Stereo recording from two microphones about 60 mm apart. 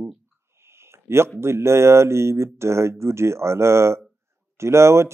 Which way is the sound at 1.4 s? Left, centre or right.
Right.